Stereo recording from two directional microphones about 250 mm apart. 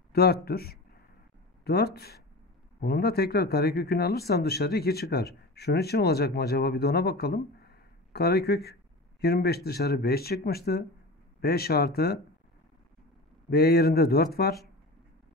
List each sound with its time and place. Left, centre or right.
0.1 s speech: left
13.5 s speech: left